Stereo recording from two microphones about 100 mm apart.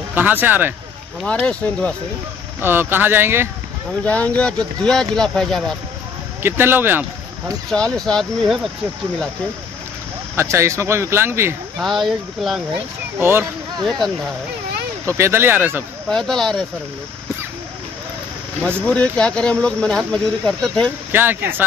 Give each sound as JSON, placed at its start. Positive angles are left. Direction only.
{"t": 0.1, "sound": "speech", "side_deg": -20}
{"t": 1.2, "sound": "speech", "side_deg": 10}
{"t": 2.6, "sound": "speech", "side_deg": -20}
{"t": 4.0, "sound": "speech", "side_deg": 15}
{"t": 6.4, "sound": "speech", "side_deg": -25}
{"t": 7.7, "sound": "speech", "side_deg": 5}
{"t": 10.3, "sound": "speech", "side_deg": -30}
{"t": 11.8, "sound": "speech", "side_deg": 0}
{"t": 13.2, "sound": "speech", "side_deg": -25}
{"t": 13.8, "sound": "speech", "side_deg": 5}
{"t": 15.0, "sound": "speech", "side_deg": -25}
{"t": 16.1, "sound": "speech", "side_deg": 5}
{"t": 18.9, "sound": "speech", "side_deg": 10}
{"t": 21.1, "sound": "speech", "side_deg": -20}